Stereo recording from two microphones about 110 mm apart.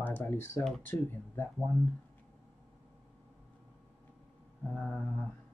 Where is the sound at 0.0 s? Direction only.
15° left (ahead or behind).